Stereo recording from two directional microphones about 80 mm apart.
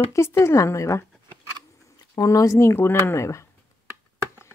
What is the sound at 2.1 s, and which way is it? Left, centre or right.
Speech, left.